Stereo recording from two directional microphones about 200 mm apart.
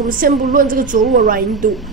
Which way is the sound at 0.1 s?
45° right (ahead or behind).